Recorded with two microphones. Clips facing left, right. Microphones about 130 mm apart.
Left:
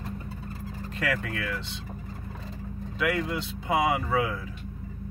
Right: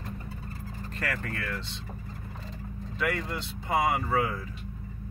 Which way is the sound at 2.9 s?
5° left (ahead or behind).